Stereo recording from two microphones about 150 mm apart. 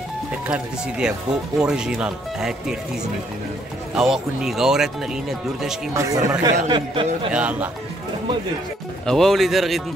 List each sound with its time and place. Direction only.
0.5 s speech: 5° right (ahead or behind)
3.9 s speech: 5° right (ahead or behind)
5.9 s speech: 25° right (ahead or behind)
7.3 s speech: 10° right (ahead or behind)
9.0 s speech: centre (ahead or behind)